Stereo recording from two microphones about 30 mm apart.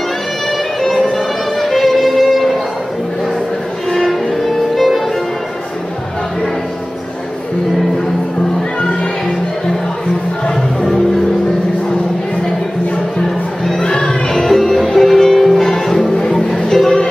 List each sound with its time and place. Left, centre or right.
1.1 s music: centre
10.5 s music: centre
13.7 s music: left
14.0 s music: centre